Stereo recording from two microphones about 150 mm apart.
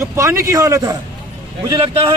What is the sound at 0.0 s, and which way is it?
Speech, 15° right (ahead or behind).